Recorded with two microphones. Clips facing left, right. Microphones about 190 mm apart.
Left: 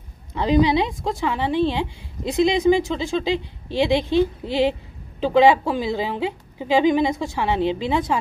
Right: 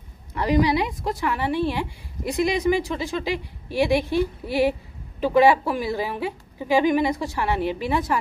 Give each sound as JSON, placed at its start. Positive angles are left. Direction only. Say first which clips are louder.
{"t": 0.3, "sound": "a woman's voice", "louder": "left 3 dB", "side_deg": 20}